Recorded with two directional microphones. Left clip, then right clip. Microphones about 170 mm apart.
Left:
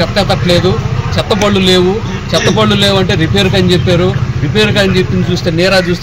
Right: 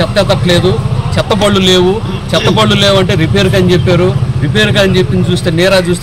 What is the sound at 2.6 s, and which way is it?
Speech, centre (ahead or behind).